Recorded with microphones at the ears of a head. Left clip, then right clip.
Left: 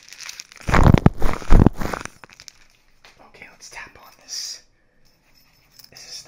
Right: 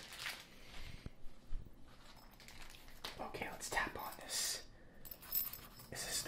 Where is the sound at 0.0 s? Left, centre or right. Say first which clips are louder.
Left 10 dB; left.